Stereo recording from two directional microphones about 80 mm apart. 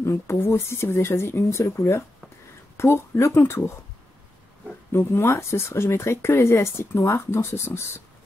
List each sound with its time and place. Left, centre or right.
0.0 s speech: left
4.9 s speech: left